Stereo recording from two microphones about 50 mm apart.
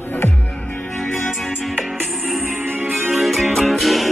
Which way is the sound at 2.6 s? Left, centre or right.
Right.